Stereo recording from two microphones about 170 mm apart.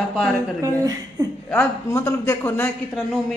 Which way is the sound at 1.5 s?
10° left (ahead or behind).